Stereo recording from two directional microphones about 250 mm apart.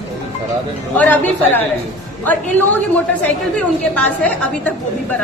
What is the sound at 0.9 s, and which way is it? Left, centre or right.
A woman's voice, centre.